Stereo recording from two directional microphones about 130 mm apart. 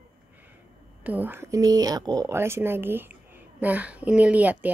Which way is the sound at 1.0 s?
15° right (ahead or behind).